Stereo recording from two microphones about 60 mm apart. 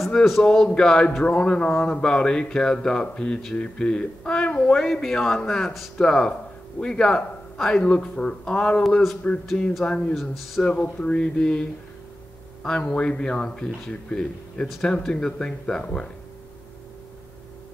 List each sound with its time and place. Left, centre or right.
0.1 s speech: centre
10.3 s speech: centre
10.8 s speech: centre
12.6 s speech: centre